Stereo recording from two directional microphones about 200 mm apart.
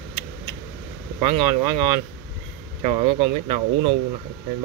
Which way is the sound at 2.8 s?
30° right (ahead or behind).